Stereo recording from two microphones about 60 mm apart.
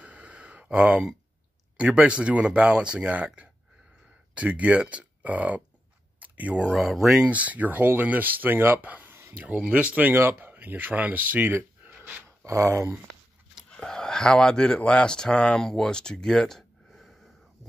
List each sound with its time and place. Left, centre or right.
0.0 s gasp: right
1.8 s speech: centre
6.1 s a sound: right
6.7 s speech: centre
7.2 s speech: right
8.8 s a sound: right
9.6 s speech: right
10.1 s speech: right
10.5 s speech: right
12.4 s speech: right
13.7 s speech: centre